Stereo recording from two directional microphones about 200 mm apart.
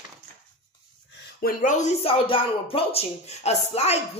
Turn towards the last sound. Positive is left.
turn(degrees=30)  # may be behind; listen again after turning